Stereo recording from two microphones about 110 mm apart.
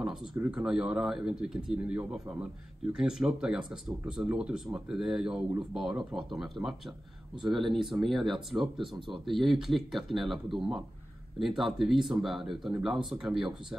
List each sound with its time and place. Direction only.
0.3 s speech: 20° right (ahead or behind)
0.7 s speech: 10° right (ahead or behind)
8.7 s speech: 50° right (ahead or behind)
9.3 s speech: centre (ahead or behind)